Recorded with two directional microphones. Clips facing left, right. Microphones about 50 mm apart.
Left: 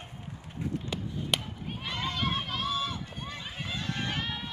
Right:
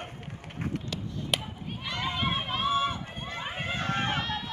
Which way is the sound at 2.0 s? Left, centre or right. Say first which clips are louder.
Right 2 dB; centre.